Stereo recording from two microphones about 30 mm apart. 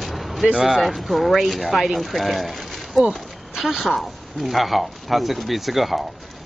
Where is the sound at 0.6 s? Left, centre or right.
Centre.